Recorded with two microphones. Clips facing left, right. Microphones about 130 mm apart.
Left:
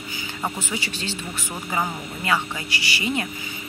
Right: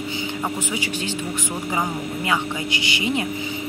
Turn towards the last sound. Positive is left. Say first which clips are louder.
# right 3 dB
turn(degrees=-20)  # may be behind; listen again after turning